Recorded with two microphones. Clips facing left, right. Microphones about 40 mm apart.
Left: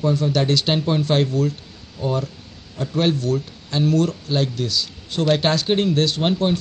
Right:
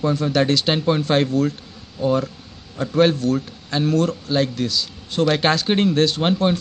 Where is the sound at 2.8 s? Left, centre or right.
Right.